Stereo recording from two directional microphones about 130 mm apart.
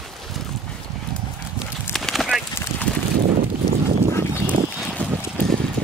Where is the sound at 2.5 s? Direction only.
20° left (ahead or behind).